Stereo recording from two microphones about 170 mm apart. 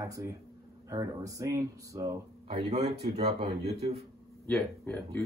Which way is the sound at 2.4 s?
40° right (ahead or behind).